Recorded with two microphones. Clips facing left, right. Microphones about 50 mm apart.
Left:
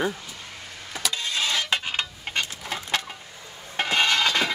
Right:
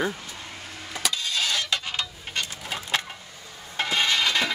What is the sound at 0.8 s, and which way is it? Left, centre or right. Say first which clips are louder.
Vehicle: even; centre.